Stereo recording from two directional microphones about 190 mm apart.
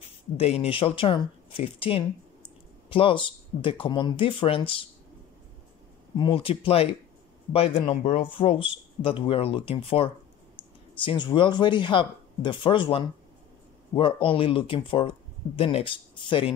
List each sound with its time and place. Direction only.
0.4 s speech: 35° left (ahead or behind)
6.1 s speech: 25° left (ahead or behind)